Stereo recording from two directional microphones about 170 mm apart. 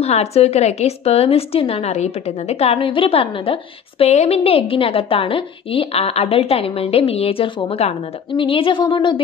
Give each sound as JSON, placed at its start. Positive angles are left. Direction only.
{"t": 0.0, "sound": "a woman's voice", "side_deg": 40}